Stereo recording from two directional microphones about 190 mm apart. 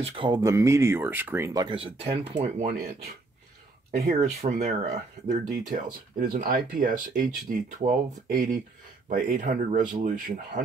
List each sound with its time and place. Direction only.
0.0 s speech: 25° right (ahead or behind)
3.9 s speech: 55° right (ahead or behind)
4.2 s speech: 35° right (ahead or behind)
5.7 s speech: 45° right (ahead or behind)